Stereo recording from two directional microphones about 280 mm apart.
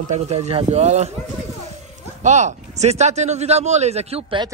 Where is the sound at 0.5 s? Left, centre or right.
Right.